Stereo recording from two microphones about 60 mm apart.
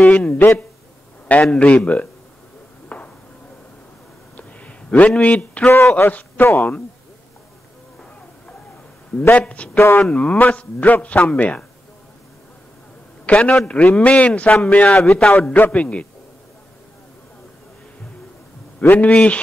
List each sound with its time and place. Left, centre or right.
0.1 s a man's voice: left
2.9 s a sound: left
4.4 s a sound: left
6.0 s a man's voice: left
9.3 s a man's voice: left
13.2 s a man's voice: left
15.0 s a man's voice: centre
15.5 s a man's voice: left
18.8 s a man's voice: left